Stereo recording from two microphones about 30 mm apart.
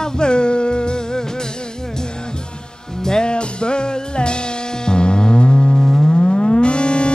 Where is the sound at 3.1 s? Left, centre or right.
Left.